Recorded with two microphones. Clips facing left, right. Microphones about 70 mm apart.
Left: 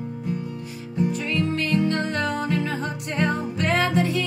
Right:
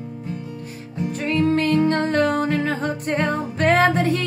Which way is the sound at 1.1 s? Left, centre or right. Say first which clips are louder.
Right 5 dB; right.